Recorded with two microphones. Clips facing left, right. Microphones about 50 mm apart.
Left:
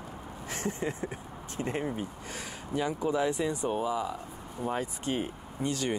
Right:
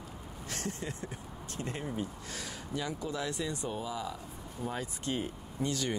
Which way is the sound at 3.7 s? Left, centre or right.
Left.